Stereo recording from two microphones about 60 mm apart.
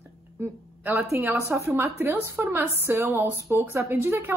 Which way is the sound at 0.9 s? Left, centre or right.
Right.